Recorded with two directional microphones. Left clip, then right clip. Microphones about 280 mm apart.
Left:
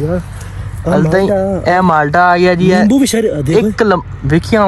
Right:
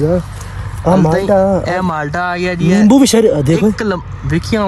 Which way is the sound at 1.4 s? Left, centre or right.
Centre.